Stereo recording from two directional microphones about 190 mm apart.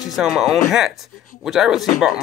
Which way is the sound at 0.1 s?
Centre (ahead or behind).